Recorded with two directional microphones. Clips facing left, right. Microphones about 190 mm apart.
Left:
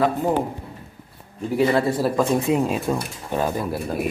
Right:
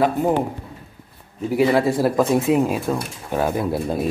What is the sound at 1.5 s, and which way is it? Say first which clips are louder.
Speech: right 2 dB; 10° right (ahead or behind).